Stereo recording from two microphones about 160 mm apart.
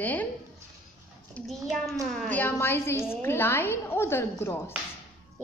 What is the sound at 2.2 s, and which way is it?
A woman's voice, 10° left (ahead or behind).